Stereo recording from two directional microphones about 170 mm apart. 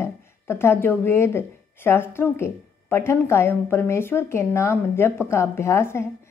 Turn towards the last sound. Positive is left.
turn(degrees=15)  # may be behind; listen again after turning